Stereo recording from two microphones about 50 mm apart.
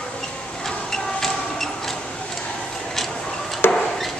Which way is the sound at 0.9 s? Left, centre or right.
Centre.